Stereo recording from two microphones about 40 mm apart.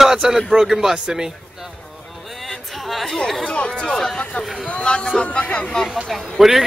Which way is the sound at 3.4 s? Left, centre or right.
Left.